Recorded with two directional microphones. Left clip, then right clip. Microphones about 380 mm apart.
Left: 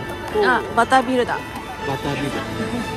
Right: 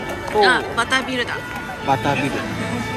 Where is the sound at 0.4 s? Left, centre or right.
Centre.